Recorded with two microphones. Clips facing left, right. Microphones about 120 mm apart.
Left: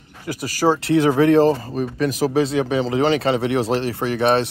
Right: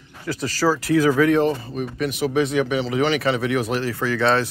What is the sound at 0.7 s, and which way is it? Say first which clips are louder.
Speech: even; 25° left (ahead or behind).